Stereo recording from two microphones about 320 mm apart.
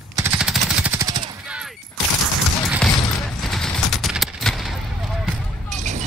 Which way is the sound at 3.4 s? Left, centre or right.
Centre.